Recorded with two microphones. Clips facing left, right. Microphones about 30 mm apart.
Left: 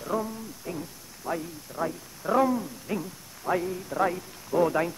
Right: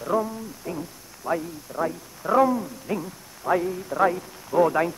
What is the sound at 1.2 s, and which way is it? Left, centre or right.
A man's voice, centre.